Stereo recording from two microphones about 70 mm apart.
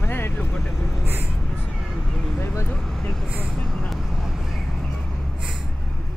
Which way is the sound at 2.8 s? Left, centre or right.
Centre.